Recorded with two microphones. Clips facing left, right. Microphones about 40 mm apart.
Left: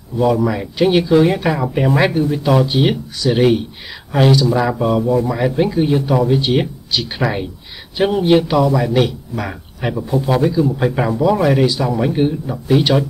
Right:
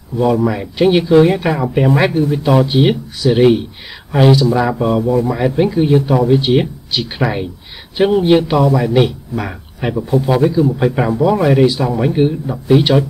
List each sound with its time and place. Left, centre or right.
0.2 s speech: centre